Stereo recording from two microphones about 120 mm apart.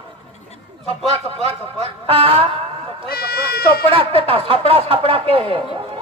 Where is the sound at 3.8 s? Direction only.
50° right (ahead or behind).